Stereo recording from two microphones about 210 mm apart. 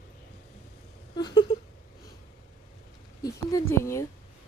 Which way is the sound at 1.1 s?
20° left (ahead or behind).